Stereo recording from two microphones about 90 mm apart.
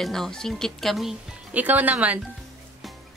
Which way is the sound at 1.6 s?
20° right (ahead or behind).